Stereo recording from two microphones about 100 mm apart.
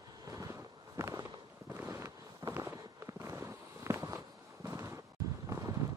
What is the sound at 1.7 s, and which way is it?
Walk, 25° right (ahead or behind).